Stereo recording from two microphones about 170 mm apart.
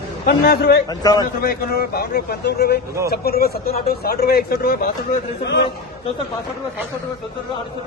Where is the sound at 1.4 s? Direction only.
60° left (ahead or behind).